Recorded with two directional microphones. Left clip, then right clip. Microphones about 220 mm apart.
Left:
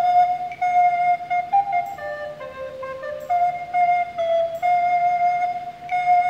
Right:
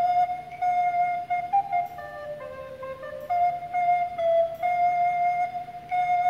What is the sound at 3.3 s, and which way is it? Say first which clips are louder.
Flute: left 4 dB; 5° left (ahead or behind).